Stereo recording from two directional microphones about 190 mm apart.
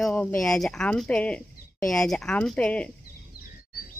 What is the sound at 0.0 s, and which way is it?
Speech, 5° left (ahead or behind).